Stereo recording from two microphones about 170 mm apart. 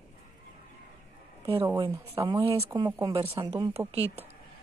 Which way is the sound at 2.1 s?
15° right (ahead or behind).